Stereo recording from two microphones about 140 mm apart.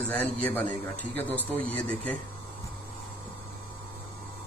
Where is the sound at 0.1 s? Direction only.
10° left (ahead or behind).